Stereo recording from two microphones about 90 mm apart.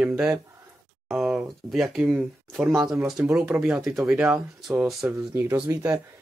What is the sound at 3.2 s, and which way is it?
Speech, 25° right (ahead or behind).